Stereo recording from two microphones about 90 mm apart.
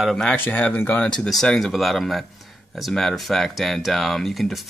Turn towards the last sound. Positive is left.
turn(degrees=0)  # may be behind; listen again after turning